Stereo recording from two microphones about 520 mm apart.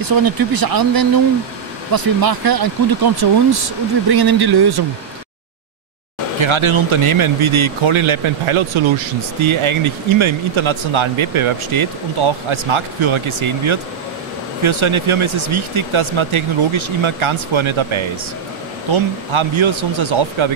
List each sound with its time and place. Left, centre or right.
0.0 s speech: right
6.4 s speech: right